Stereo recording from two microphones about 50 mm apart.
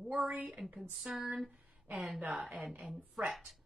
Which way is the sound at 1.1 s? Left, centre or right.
Right.